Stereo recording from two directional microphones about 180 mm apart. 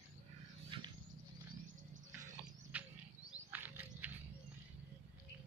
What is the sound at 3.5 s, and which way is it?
Wild animals, 10° right (ahead or behind).